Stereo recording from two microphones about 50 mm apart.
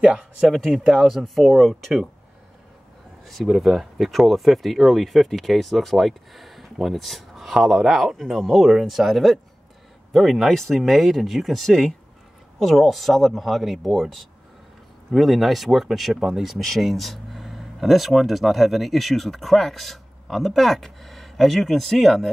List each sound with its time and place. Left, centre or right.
0.0 s speech: centre
3.4 s speech: centre